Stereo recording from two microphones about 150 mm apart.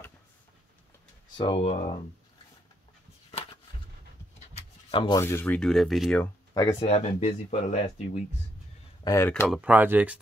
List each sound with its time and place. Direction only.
1.3 s speech: 30° left (ahead or behind)
4.4 s a sound: 45° left (ahead or behind)
5.2 s speech: 15° left (ahead or behind)
6.5 s speech: 20° left (ahead or behind)
6.8 s speech: 45° left (ahead or behind)
9.0 s speech: 20° left (ahead or behind)
9.5 s speech: 10° right (ahead or behind)